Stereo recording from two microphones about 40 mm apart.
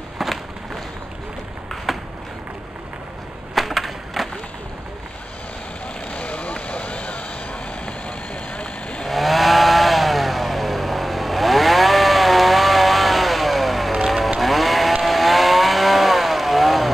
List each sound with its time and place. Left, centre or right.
0.2 s walk: centre
1.9 s a sound: centre
3.5 s skateboard: centre
6.1 s vehicle: left
9.0 s chainsaw: centre
14.0 s vehicle: centre
14.4 s chainsaw: centre